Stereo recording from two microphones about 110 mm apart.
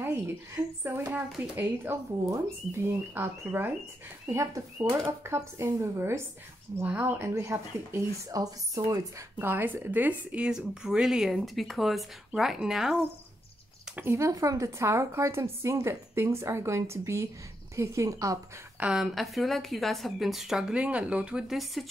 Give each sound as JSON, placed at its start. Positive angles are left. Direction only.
{"t": 0.8, "sound": "speech", "side_deg": -20}
{"t": 8.3, "sound": "speech", "side_deg": -35}
{"t": 9.4, "sound": "a woman's voice", "side_deg": -20}
{"t": 13.9, "sound": "speech", "side_deg": -25}
{"t": 18.8, "sound": "a woman's voice", "side_deg": -5}